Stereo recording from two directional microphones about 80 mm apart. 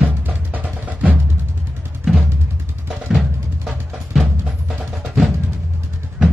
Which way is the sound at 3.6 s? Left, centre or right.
Centre.